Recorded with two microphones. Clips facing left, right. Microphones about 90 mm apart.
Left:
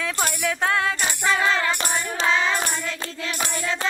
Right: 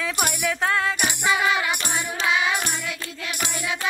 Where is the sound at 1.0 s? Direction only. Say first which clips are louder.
Even; 15° right (ahead or behind).